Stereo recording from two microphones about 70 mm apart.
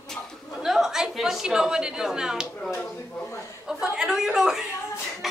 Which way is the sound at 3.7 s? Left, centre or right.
Centre.